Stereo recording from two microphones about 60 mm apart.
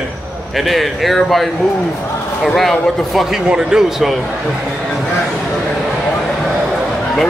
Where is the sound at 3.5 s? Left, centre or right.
Centre.